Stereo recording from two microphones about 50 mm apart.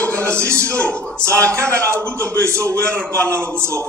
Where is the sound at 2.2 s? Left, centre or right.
Right.